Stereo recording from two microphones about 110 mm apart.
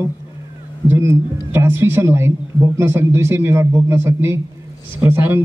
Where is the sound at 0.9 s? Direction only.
25° right (ahead or behind).